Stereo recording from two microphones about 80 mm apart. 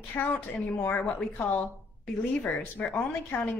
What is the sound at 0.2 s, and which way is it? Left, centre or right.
A woman's voice, left.